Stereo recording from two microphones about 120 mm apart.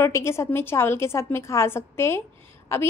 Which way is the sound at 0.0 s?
20° left (ahead or behind).